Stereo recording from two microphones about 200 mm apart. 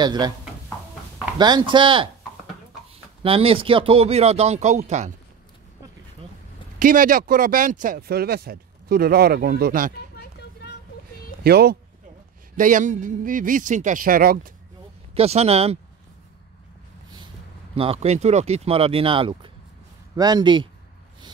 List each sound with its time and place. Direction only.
0.0 s speech: 20° right (ahead or behind)
1.4 s speech: 20° right (ahead or behind)
3.2 s speech: 30° right (ahead or behind)
6.8 s speech: 45° right (ahead or behind)
11.4 s speech: 55° right (ahead or behind)
12.5 s speech: 40° right (ahead or behind)
15.1 s speech: 30° right (ahead or behind)
17.7 s speech: 30° right (ahead or behind)